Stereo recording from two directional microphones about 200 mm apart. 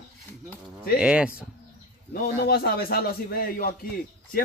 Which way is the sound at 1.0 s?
5° right (ahead or behind).